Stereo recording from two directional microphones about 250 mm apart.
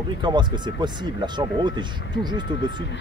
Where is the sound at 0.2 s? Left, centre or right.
Centre.